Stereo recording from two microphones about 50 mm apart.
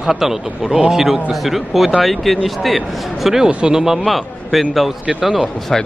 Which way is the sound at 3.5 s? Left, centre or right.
Centre.